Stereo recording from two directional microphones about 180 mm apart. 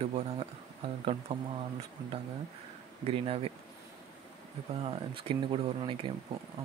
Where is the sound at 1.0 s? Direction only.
30° right (ahead or behind).